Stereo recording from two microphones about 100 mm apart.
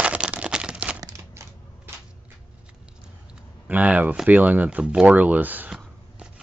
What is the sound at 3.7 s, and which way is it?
Speech, 15° right (ahead or behind).